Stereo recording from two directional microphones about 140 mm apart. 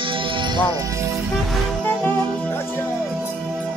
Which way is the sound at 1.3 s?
Centre (ahead or behind).